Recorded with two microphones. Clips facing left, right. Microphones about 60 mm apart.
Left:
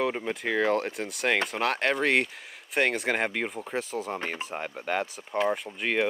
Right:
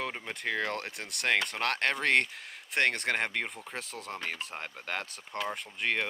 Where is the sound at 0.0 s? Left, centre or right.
Centre.